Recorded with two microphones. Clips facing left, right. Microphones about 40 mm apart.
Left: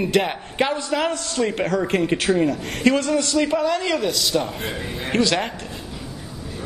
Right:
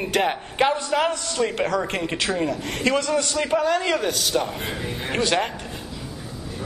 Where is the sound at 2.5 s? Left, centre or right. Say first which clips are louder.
Left 1 dB; right.